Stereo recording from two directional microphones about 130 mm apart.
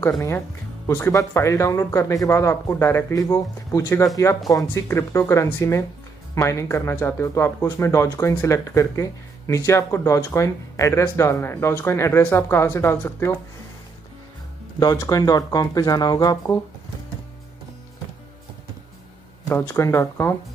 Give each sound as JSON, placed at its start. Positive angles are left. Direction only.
{"t": 0.8, "sound": "speech", "side_deg": 20}
{"t": 14.8, "sound": "speech", "side_deg": 30}
{"t": 19.5, "sound": "speech", "side_deg": 20}